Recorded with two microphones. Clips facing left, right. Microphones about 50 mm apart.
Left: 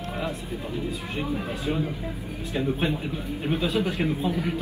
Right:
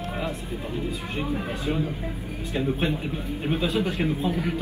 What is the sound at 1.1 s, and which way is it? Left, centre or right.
Speech, centre.